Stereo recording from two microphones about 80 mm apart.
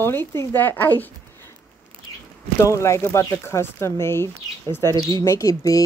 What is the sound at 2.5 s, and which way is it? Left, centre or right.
Speech, left.